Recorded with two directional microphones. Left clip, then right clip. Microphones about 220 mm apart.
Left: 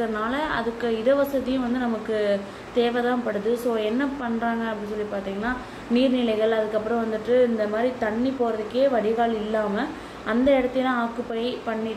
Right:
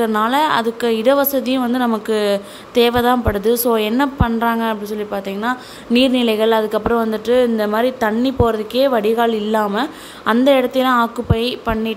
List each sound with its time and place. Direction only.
0.0 s speech: 50° right (ahead or behind)
5.9 s speech: 50° right (ahead or behind)